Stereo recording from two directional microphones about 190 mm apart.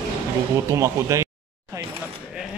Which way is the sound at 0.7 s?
15° right (ahead or behind).